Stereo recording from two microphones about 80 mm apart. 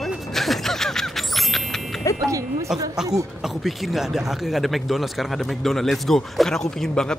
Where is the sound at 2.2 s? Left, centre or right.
Right.